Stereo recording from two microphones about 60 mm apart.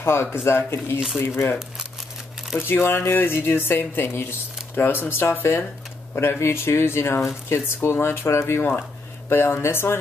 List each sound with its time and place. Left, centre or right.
0.0 s speech: left
2.7 s speech: left